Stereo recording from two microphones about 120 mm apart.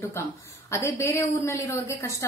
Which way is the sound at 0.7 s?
25° left (ahead or behind).